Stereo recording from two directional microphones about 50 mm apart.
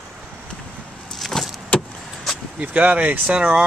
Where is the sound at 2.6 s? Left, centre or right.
Right.